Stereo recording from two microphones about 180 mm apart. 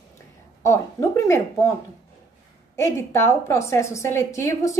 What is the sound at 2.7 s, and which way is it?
A woman's voice, 15° left (ahead or behind).